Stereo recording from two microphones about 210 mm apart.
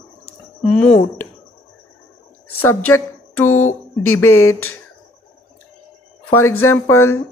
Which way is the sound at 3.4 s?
85° left.